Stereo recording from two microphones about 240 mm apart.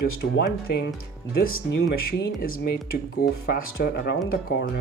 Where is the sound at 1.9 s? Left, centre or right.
Left.